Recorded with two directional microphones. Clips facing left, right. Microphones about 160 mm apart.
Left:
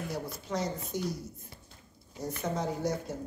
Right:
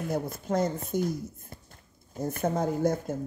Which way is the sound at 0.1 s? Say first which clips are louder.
Right 9 dB; 50° right (ahead or behind).